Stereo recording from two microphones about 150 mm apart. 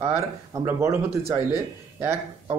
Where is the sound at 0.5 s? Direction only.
20° right (ahead or behind).